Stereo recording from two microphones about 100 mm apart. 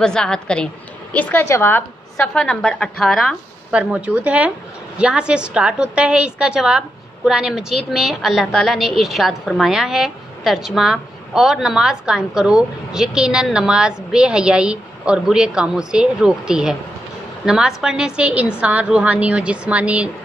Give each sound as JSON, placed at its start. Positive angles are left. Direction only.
{"t": 0.0, "sound": "a woman's voice", "side_deg": 5}
{"t": 2.3, "sound": "a woman's voice", "side_deg": 10}
{"t": 3.7, "sound": "a woman's voice", "side_deg": -15}